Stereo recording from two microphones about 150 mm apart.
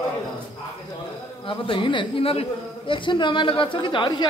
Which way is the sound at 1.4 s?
35° left (ahead or behind).